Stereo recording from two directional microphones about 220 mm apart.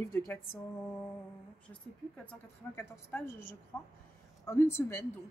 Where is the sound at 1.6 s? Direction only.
5° left (ahead or behind).